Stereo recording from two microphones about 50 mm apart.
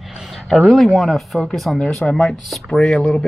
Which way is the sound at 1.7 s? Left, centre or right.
Left.